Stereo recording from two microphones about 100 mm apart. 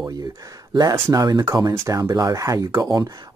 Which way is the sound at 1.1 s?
40° right (ahead or behind).